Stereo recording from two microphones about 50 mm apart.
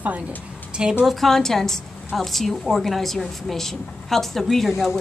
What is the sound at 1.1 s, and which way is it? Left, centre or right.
A woman's voice, centre.